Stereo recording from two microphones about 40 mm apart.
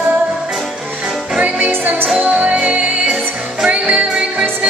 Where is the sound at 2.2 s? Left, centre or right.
Right.